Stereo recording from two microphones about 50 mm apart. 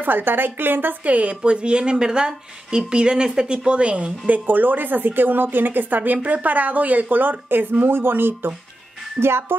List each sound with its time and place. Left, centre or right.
0.0 s a woman's voice: right
1.0 s a woman's voice: right
4.3 s a woman's voice: right